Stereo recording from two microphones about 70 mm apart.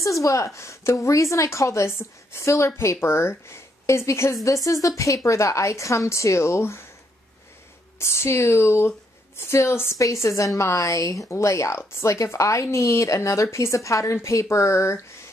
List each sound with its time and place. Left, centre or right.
0.0 s a woman's voice: left
4.5 s a woman's voice: left
8.0 s a woman's voice: left